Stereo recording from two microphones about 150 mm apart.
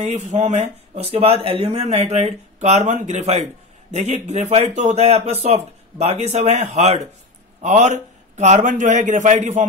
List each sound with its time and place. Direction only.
0.0 s speech: 45° right (ahead or behind)